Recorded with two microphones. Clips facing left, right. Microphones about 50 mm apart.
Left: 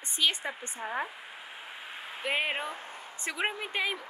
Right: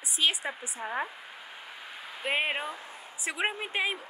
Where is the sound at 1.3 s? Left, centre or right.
Left.